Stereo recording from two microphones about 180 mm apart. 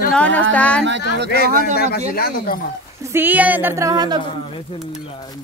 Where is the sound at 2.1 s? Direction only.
55° left (ahead or behind).